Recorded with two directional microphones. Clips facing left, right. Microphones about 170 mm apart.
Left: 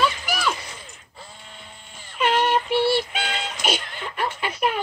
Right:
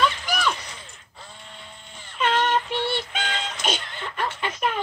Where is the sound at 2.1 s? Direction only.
10° left (ahead or behind).